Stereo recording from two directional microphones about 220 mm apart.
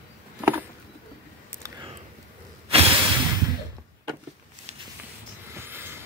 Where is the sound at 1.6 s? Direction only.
20° right (ahead or behind).